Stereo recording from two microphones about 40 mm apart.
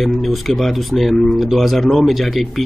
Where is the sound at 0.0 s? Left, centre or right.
Centre.